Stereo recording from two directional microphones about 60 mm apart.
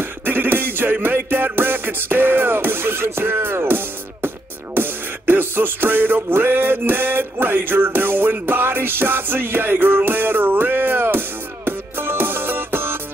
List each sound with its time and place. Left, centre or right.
0.0 s music: right